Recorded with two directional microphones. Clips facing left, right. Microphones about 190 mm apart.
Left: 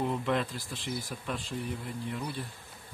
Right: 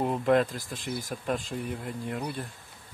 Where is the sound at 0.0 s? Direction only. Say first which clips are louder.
Right 6 dB; 45° right (ahead or behind).